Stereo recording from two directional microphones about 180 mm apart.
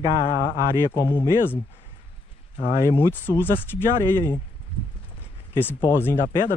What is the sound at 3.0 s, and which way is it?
Speech, 10° left (ahead or behind).